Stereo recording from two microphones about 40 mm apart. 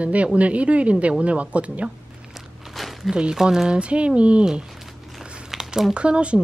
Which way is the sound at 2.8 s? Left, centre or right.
Centre.